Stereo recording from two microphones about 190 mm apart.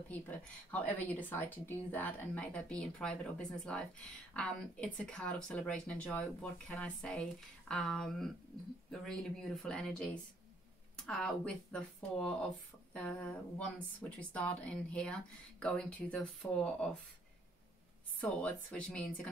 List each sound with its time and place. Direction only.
0.1 s a woman's voice: 10° left (ahead or behind)
12.9 s a sound: 5° left (ahead or behind)
14.3 s a woman's voice: 5° left (ahead or behind)
18.2 s a woman's voice: 5° left (ahead or behind)